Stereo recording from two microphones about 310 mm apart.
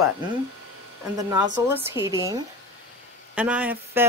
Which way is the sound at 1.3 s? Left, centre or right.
Centre.